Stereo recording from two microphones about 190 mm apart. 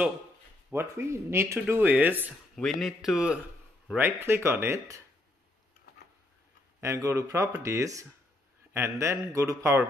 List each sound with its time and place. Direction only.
0.7 s a man's voice: 15° right (ahead or behind)
6.8 s speech: 15° right (ahead or behind)